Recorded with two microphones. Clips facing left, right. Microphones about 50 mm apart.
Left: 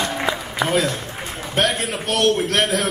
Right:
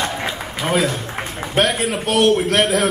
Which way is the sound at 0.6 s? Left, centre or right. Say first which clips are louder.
Right 2 dB; centre.